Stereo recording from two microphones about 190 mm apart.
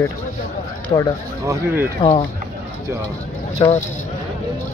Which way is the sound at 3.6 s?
25° left (ahead or behind).